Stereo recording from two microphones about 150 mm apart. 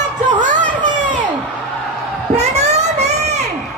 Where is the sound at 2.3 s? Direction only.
50° right (ahead or behind).